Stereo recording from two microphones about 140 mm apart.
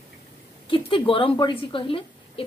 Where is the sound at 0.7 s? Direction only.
40° left (ahead or behind).